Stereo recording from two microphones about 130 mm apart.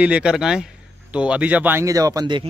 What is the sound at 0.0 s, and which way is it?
Speech, 10° right (ahead or behind).